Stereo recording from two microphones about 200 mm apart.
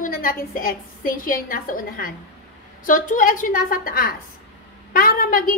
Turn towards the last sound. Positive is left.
turn(degrees=45)  # may be behind; listen again after turning